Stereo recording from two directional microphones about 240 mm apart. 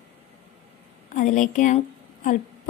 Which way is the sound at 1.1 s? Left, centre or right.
Left.